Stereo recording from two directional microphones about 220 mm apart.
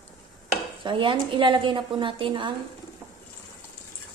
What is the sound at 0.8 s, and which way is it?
A woman's voice, 20° right (ahead or behind).